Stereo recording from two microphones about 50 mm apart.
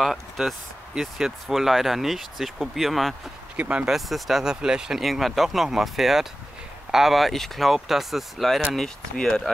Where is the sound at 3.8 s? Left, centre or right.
Centre.